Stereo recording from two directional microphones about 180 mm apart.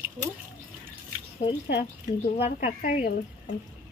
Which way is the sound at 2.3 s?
40° left (ahead or behind).